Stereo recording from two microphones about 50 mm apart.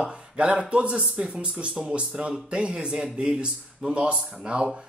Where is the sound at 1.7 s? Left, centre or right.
Centre.